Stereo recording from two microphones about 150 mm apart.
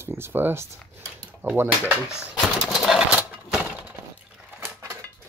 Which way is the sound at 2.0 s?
20° left (ahead or behind).